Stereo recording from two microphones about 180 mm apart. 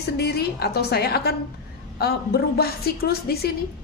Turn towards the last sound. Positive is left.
turn(degrees=60)  # may be behind; listen again after turning